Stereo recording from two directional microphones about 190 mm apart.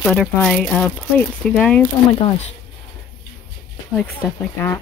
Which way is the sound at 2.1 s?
30° left (ahead or behind).